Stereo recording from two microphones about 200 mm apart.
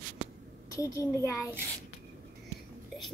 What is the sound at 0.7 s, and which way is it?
Speech, 15° left (ahead or behind).